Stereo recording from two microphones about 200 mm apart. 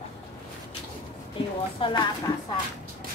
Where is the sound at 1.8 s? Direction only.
25° left (ahead or behind).